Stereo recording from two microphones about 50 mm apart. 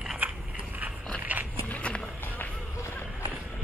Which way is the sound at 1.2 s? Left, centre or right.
Right.